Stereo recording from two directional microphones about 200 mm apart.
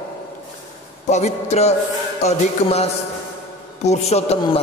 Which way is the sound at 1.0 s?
35° left (ahead or behind).